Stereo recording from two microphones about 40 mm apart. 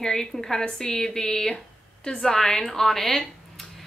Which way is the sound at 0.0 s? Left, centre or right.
Centre.